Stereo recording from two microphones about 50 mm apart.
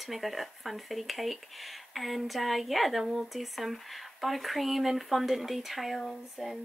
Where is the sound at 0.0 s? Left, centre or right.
Centre.